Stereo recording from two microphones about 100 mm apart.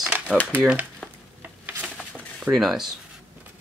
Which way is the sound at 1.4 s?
20° right (ahead or behind).